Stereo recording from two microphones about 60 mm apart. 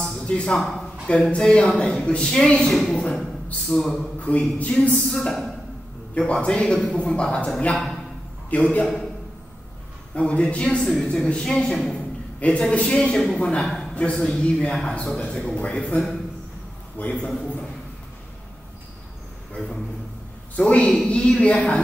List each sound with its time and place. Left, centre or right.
0.0 s a sound: centre
0.6 s a man's voice: centre
1.0 s a woman's voice: centre
4.2 s speech: left
5.1 s a woman's voice: centre
7.7 s speech: centre
8.5 s speech: left
10.1 s a woman's voice: centre
12.4 s a woman's voice: centre
17.0 s speech: centre
20.5 s a woman's voice: centre